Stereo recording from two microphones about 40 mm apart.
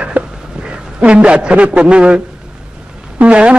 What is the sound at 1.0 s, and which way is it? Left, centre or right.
A man's voice, right.